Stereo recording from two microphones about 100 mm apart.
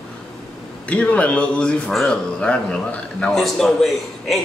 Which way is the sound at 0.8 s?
10° left (ahead or behind).